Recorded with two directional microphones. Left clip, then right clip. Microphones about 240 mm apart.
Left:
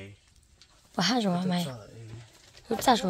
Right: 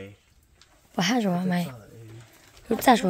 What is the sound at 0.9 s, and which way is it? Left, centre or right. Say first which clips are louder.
Speech: right 2 dB; centre.